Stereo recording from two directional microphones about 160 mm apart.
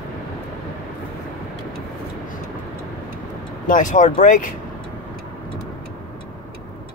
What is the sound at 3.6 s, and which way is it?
Speech, 55° left (ahead or behind).